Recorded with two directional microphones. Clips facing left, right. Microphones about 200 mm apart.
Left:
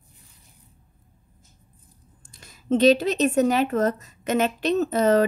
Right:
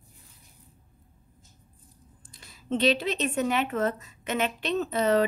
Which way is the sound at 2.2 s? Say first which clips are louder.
Left 3 dB; 45° left (ahead or behind).